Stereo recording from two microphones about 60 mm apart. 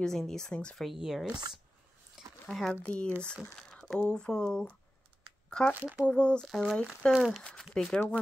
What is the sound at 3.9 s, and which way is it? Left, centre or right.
Speech, centre.